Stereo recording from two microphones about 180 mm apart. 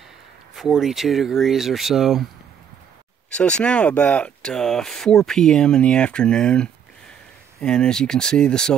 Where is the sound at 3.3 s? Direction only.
5° left (ahead or behind).